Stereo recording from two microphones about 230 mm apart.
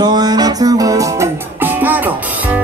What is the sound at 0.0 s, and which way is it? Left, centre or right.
Music, centre.